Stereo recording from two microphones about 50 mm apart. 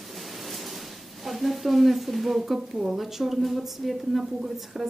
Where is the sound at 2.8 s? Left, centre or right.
Centre.